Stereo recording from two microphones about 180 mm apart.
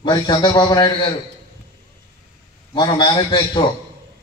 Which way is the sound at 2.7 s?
25° left (ahead or behind).